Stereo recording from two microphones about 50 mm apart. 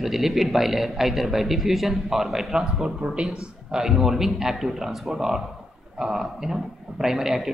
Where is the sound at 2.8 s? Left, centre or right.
Centre.